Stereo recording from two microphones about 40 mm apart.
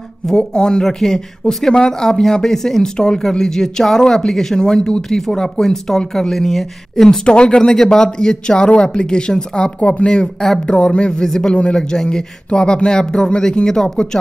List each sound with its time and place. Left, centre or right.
0.4 s speech: centre
0.8 s speech: centre
7.2 s speech: left
9.8 s speech: left
10.0 s speech: centre
11.1 s speech: centre